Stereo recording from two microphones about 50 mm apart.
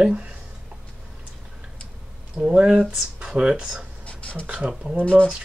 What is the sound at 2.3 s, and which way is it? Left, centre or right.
Speech, centre.